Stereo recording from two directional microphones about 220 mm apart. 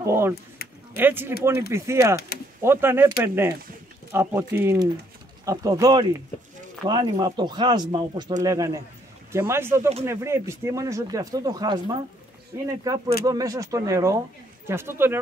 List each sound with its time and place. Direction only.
0.0 s speech: 10° right (ahead or behind)